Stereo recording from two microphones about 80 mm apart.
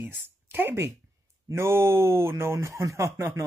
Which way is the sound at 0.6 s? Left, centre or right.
Right.